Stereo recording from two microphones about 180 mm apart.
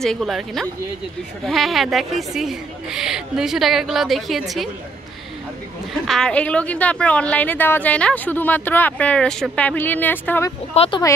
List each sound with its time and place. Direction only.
0.0 s speech: centre (ahead or behind)
6.0 s a woman's voice: 5° left (ahead or behind)
10.7 s speech: 35° left (ahead or behind)